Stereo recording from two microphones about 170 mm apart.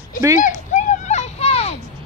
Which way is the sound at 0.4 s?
45° left (ahead or behind).